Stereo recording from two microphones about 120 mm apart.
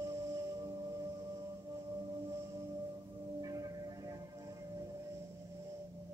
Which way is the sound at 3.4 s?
30° right (ahead or behind).